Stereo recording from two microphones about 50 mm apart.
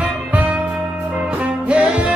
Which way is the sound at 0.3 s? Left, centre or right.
Right.